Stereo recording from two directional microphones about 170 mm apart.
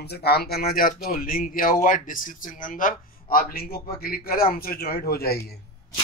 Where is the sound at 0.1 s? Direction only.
70° left (ahead or behind).